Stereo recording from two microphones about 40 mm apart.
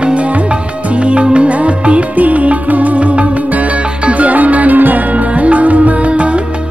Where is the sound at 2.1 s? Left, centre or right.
Right.